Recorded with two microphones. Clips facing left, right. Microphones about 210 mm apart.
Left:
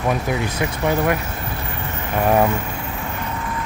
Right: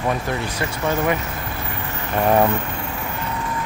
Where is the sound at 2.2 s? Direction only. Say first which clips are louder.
Even; 5° left (ahead or behind).